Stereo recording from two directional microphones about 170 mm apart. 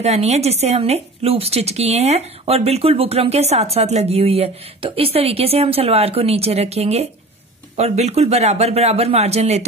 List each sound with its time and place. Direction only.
0.0 s speech: 40° right (ahead or behind)